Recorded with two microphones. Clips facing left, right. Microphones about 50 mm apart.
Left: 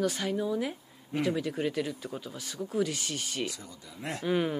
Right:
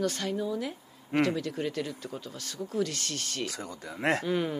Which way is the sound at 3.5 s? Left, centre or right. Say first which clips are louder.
Right 7 dB; right.